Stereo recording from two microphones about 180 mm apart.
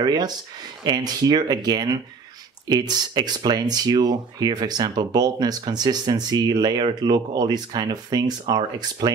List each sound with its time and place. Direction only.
0.0 s speech: 20° right (ahead or behind)